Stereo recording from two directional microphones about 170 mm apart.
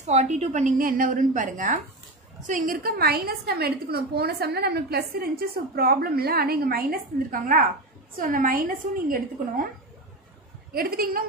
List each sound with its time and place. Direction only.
0.0 s a woman's voice: 40° right (ahead or behind)
10.7 s a woman's voice: 60° right (ahead or behind)